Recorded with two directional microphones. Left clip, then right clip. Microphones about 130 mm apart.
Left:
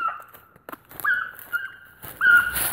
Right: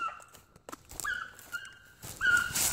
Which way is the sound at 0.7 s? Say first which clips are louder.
Left 12 dB; centre (ahead or behind).